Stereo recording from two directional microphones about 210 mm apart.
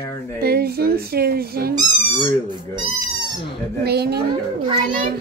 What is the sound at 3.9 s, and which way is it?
Speech, 50° right (ahead or behind).